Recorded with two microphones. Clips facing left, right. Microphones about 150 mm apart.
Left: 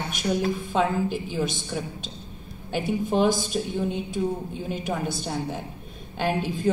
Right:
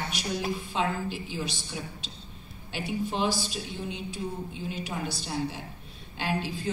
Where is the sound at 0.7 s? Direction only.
50° left (ahead or behind).